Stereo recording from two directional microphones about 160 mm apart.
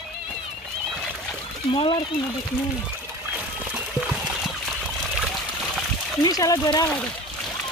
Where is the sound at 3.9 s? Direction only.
5° right (ahead or behind).